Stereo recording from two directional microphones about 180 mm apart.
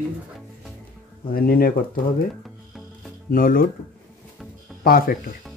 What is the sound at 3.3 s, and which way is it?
Speech, 50° left (ahead or behind).